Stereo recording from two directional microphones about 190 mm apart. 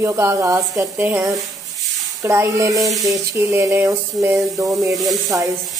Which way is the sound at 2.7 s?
Centre (ahead or behind).